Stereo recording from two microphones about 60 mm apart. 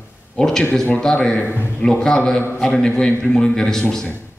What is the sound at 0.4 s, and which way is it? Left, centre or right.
A man's voice, centre.